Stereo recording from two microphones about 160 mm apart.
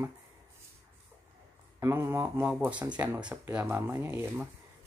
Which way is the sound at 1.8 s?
15° right (ahead or behind).